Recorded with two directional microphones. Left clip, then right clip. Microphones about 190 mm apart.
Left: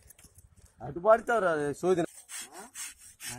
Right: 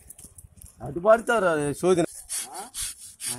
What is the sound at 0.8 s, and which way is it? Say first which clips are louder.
Speech: right 4 dB; 10° right (ahead or behind).